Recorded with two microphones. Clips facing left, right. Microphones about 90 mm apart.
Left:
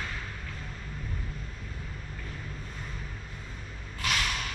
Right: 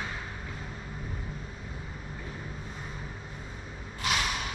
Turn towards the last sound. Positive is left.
turn(degrees=-15)  # may be behind; listen again after turning